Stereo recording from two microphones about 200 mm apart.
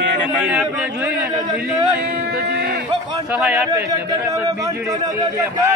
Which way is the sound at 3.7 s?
15° right (ahead or behind).